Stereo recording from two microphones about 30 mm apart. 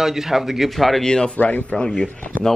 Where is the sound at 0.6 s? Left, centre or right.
Centre.